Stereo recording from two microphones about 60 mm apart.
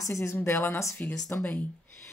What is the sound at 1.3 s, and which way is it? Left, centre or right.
Speech, left.